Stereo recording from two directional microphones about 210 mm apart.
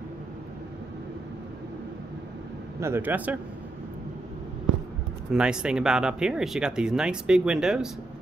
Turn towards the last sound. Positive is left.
turn(degrees=-5)  # may be behind; listen again after turning